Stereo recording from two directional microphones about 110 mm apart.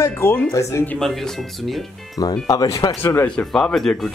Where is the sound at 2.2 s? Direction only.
35° left (ahead or behind).